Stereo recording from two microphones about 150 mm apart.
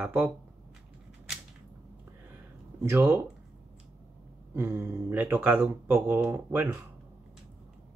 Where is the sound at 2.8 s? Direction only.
15° right (ahead or behind).